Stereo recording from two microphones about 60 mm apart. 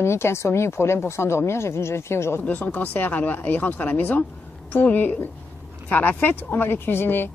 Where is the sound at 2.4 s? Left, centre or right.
Left.